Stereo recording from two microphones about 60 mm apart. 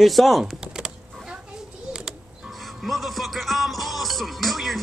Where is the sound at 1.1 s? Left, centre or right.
Centre.